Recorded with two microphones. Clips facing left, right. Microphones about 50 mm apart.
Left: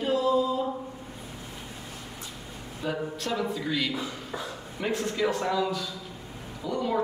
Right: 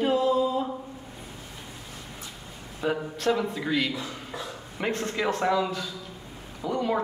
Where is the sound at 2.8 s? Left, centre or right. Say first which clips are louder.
Right 5 dB; centre.